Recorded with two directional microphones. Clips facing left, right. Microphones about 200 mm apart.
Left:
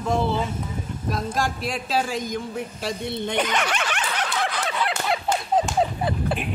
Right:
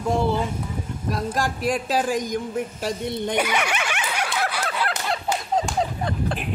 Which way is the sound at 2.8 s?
10° right (ahead or behind).